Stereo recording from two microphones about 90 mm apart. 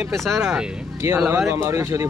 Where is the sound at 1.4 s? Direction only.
30° right (ahead or behind).